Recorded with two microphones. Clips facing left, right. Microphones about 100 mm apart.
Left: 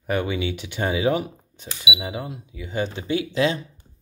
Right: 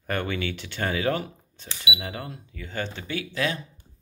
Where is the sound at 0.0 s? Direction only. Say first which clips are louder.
Left 4 dB; 10° left (ahead or behind).